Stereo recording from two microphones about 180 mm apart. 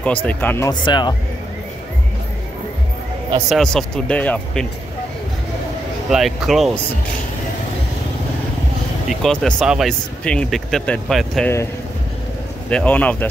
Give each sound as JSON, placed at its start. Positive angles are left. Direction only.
{"t": 0.0, "sound": "speech", "side_deg": 10}
{"t": 0.7, "sound": "speech", "side_deg": 25}
{"t": 3.4, "sound": "speech", "side_deg": 0}
{"t": 6.0, "sound": "speech", "side_deg": 0}
{"t": 9.2, "sound": "speech", "side_deg": 0}
{"t": 12.6, "sound": "speech", "side_deg": 10}